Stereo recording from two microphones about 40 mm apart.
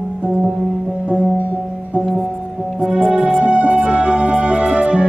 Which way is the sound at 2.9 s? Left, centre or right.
Right.